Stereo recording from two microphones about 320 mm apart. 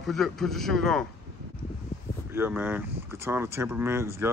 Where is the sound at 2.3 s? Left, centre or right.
Centre.